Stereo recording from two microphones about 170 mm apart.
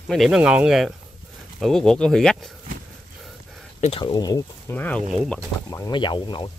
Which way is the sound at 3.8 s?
35° left (ahead or behind).